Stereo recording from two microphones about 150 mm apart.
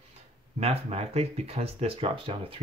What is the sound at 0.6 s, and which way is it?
Speech, 45° right (ahead or behind).